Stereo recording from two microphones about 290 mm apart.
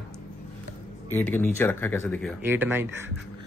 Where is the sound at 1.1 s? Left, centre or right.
Centre.